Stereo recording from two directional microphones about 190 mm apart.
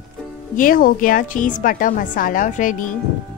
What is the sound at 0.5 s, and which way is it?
A woman's voice, 45° left (ahead or behind).